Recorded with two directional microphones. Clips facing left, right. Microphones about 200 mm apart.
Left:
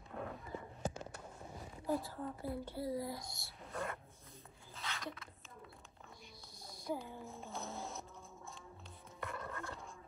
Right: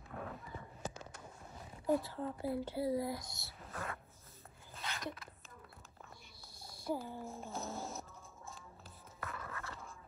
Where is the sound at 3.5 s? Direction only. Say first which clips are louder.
Left 4 dB; centre (ahead or behind).